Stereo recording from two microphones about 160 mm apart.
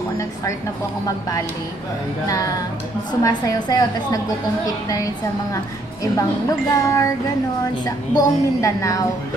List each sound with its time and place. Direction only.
2.2 s a woman's voice: 20° left (ahead or behind)
6.7 s wind chime: 20° left (ahead or behind)
7.8 s a woman's voice: 20° left (ahead or behind)